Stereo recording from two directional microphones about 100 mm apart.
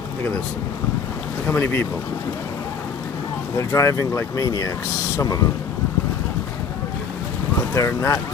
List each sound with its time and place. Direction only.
1.5 s speech: 25° left (ahead or behind)
3.5 s speech: 30° left (ahead or behind)
7.7 s speech: 30° left (ahead or behind)